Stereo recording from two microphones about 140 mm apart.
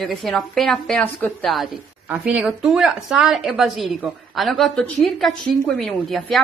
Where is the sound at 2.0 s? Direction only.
5° right (ahead or behind).